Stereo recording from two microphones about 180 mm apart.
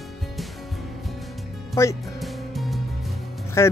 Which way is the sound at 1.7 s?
15° left (ahead or behind).